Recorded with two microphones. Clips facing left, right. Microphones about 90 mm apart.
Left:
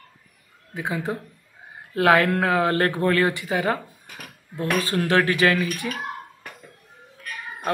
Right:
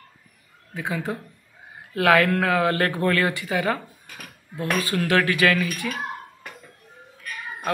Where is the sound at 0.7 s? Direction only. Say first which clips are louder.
Left 1 dB; 20° left (ahead or behind).